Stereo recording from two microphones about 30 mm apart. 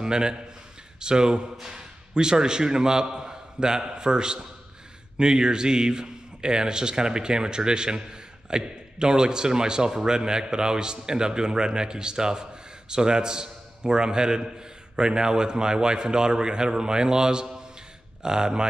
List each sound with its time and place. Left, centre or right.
0.0 s a man's voice: right